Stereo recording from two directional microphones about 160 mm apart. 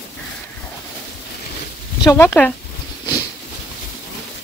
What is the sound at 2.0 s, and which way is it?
Speech, 15° left (ahead or behind).